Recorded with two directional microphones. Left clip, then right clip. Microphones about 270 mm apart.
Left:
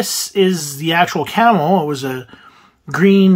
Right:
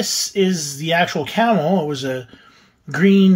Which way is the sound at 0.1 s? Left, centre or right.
Centre.